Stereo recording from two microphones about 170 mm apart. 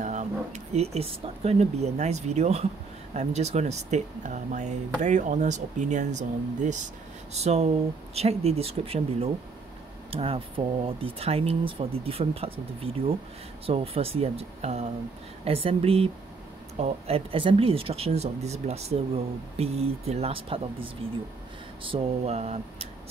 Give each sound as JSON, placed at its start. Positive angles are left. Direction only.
{"t": 0.0, "sound": "speech", "side_deg": -45}